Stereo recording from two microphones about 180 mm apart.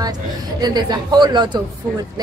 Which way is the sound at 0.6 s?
25° right (ahead or behind).